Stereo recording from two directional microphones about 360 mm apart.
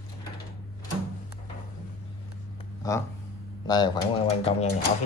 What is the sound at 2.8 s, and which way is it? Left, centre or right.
Speech, centre.